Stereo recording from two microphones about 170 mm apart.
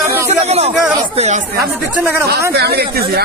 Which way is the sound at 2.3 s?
70° right (ahead or behind).